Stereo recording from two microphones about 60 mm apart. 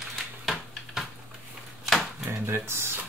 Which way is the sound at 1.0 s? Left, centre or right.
Centre.